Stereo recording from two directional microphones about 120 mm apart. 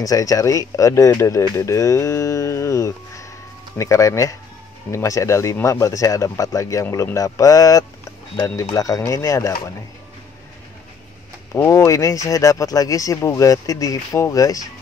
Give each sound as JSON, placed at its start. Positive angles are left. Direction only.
{"t": 0.0, "sound": "speech", "side_deg": 30}
{"t": 11.5, "sound": "speech", "side_deg": 25}